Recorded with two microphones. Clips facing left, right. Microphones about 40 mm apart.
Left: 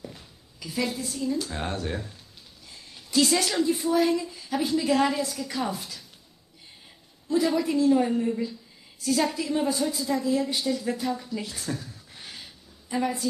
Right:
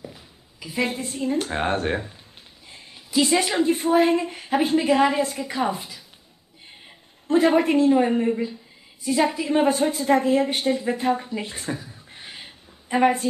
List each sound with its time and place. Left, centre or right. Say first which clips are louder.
0.0 s a sound: right 2 dB; centre
0.7 s a woman's voice: right 4 dB; right
2.7 s a sound: right 3 dB; right
3.2 s speech: right 3 dB; right
3.6 s a woman's voice: right 5 dB; right
4.9 s speech: right 4 dB; right
5.2 s a woman's voice: right 5 dB; right
5.5 s speech: right 5 dB; right
7.2 s a woman's voice: right 6 dB; right
9.5 s a woman's voice: right 6 dB; right
10.8 s a woman's voice: right 6 dB; right
11.8 s a sound: right 2 dB; right
12.4 s a sound: right 6 dB; right